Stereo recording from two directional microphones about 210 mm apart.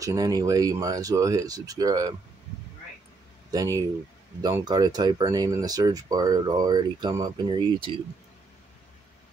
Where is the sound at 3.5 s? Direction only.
15° right (ahead or behind).